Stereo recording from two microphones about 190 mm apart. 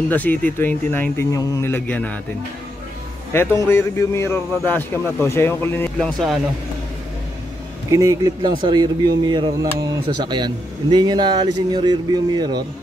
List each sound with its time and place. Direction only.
0.1 s a man's voice: 10° left (ahead or behind)
3.3 s a man's voice: 15° left (ahead or behind)
7.9 s speech: 15° right (ahead or behind)